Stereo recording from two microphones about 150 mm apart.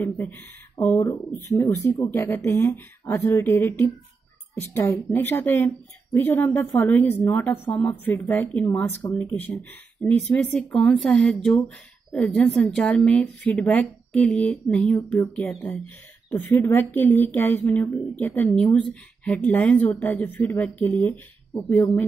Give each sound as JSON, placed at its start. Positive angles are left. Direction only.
{"t": 0.0, "sound": "speech", "side_deg": 15}